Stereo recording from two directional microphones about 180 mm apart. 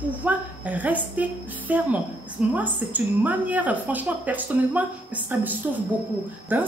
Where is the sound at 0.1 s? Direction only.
10° right (ahead or behind).